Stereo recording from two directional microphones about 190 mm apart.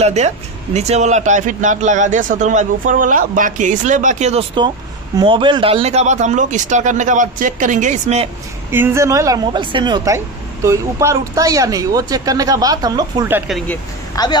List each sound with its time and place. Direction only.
0.0 s speech: 35° right (ahead or behind)
8.7 s speech: 10° right (ahead or behind)
13.5 s speech: centre (ahead or behind)
14.1 s speech: 20° left (ahead or behind)